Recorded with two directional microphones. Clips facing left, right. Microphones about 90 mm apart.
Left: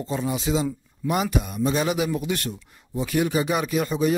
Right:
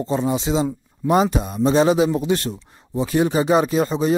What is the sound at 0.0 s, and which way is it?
Speech, 30° right (ahead or behind).